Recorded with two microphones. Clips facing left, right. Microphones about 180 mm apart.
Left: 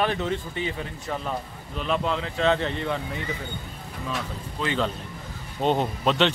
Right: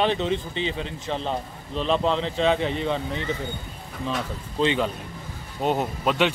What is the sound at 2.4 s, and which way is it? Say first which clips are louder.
Speech: even; 15° right (ahead or behind).